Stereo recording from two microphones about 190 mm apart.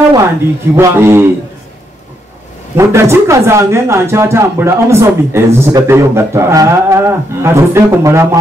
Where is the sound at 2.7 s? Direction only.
15° right (ahead or behind).